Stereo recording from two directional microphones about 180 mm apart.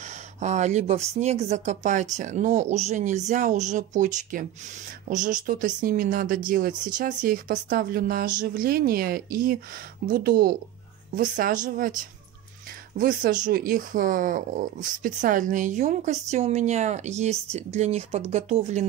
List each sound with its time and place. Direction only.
0.0 s a woman's voice: 40° right (ahead or behind)
12.9 s a woman's voice: 50° right (ahead or behind)